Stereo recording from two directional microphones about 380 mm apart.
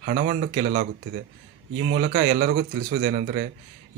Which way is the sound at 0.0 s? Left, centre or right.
Right.